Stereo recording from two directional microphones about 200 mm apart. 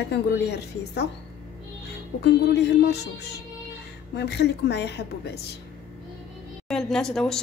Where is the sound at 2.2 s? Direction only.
55° left (ahead or behind).